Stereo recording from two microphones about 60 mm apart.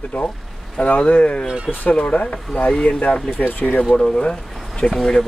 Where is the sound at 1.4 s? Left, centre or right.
Centre.